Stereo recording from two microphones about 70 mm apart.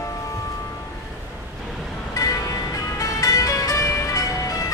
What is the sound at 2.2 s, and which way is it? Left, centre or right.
Music, left.